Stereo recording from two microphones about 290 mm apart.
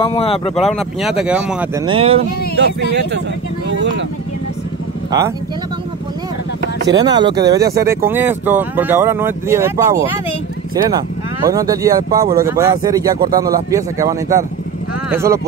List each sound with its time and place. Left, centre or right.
0.0 s speech: centre
0.6 s speech: centre
1.9 s speech: centre
3.7 s speech: right
6.9 s speech: centre